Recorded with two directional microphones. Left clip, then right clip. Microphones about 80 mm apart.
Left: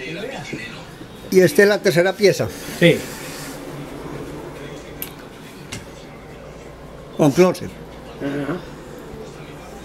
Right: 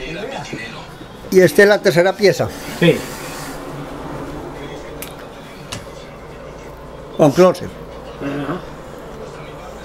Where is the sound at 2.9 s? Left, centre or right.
Centre.